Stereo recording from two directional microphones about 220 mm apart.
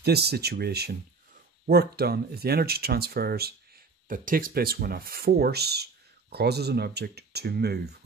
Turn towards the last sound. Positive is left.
turn(degrees=-45)  # may be behind; listen again after turning